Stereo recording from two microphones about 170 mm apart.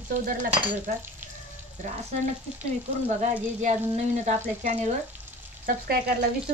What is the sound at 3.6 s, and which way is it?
Speech, 45° right (ahead or behind).